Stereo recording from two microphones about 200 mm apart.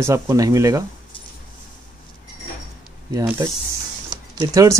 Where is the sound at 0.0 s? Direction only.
15° right (ahead or behind).